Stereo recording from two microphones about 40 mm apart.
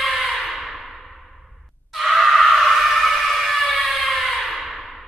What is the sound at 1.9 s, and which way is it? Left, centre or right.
Screaming, centre.